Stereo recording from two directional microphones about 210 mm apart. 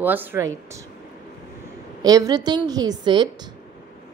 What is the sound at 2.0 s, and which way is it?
A woman's voice, 15° right (ahead or behind).